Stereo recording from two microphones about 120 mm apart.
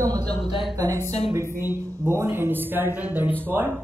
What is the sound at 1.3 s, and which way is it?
Speech, 20° right (ahead or behind).